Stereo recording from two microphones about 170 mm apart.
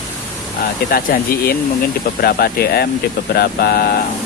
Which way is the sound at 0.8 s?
60° left (ahead or behind).